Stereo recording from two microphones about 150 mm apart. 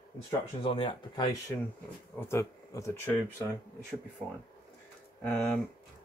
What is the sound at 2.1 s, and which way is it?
Speech, 15° left (ahead or behind).